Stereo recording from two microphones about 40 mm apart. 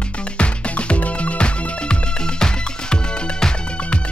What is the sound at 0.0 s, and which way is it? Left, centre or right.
Music, left.